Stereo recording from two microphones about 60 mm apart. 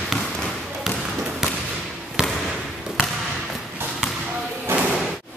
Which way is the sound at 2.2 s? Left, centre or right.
Centre.